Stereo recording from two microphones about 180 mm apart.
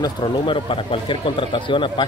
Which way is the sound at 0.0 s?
25° left (ahead or behind).